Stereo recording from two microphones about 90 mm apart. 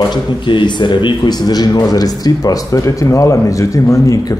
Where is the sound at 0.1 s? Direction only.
60° left (ahead or behind).